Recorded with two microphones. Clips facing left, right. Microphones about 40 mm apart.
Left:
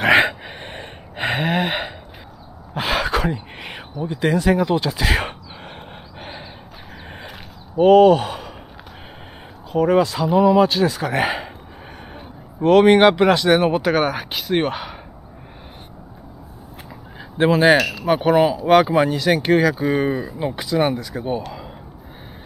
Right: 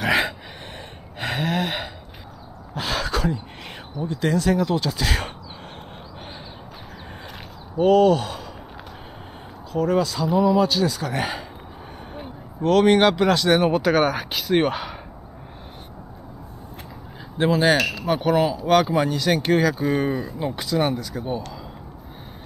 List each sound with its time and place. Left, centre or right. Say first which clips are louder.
0.0 s gasp: left 6 dB; left
2.7 s a sound: left 5 dB; left
4.0 s speech: left 3 dB; centre
7.8 s speech: left 5 dB; left
9.7 s speech: left 5 dB; left
12.6 s speech: left 4 dB; left; by 15.0 s centre
17.4 s speech: left 4 dB; left
17.7 s speech: left 3 dB; centre
18.2 s speech: left 4 dB; left